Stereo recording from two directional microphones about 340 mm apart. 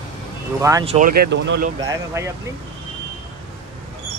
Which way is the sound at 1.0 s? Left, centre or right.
Right.